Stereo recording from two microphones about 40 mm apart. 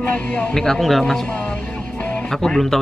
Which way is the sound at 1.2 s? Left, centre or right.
Left.